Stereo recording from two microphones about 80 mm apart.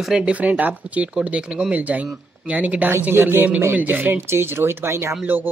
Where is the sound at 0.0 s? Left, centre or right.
Centre.